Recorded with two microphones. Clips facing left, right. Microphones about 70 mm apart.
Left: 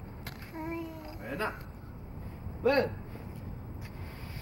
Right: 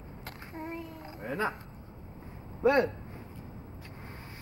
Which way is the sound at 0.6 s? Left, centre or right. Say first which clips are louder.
Left 3 dB; centre.